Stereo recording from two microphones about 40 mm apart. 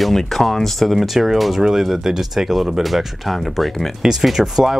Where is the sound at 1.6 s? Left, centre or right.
Centre.